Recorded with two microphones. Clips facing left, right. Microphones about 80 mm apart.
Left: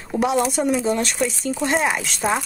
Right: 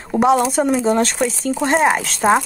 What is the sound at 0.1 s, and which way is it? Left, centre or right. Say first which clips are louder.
Speech: right 5 dB; right.